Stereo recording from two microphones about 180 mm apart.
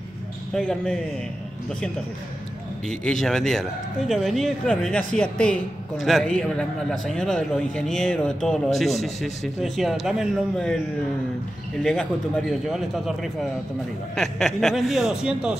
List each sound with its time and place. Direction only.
0.5 s speech: 5° left (ahead or behind)
2.9 s speech: 5° left (ahead or behind)
11.8 s speech: 5° left (ahead or behind)